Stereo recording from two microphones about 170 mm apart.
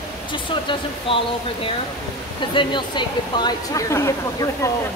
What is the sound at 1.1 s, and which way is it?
Speech, 30° left (ahead or behind).